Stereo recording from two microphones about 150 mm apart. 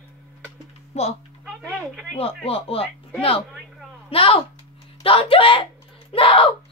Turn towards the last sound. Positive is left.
turn(degrees=35)  # may be behind; listen again after turning